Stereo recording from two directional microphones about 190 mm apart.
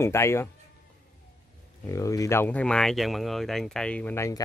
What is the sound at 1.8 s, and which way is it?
Speech, 15° left (ahead or behind).